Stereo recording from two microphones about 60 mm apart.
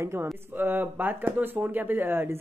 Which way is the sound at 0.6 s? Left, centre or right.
Right.